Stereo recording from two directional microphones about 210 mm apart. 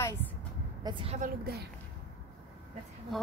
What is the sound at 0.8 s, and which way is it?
Speech, 25° right (ahead or behind).